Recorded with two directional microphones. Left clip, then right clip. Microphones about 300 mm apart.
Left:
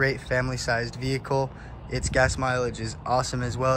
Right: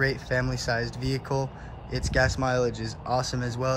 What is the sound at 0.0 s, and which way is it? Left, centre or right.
Speech, centre.